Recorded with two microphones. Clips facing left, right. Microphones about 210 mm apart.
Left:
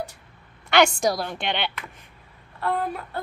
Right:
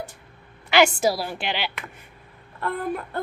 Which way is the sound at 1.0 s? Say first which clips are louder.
Right 1 dB; 5° right (ahead or behind).